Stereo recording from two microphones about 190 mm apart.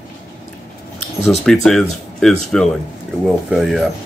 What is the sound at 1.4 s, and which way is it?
Speech, centre (ahead or behind).